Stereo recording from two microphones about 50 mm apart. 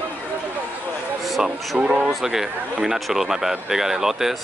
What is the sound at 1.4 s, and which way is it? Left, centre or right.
Speech, centre.